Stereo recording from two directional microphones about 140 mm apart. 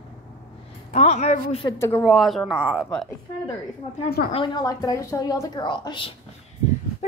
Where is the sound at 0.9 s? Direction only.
50° left (ahead or behind).